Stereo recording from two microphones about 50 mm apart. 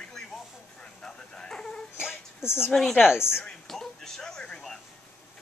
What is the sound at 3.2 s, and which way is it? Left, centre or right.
Speech, left.